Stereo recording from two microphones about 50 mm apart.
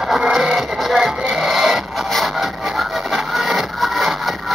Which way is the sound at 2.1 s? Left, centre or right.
Centre.